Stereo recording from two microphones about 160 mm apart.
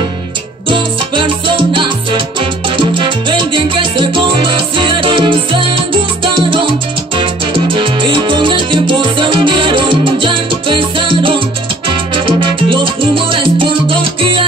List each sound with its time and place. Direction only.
0.7 s salsa music: 30° right (ahead or behind)